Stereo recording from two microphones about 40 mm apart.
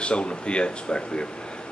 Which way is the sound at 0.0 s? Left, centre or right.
Left.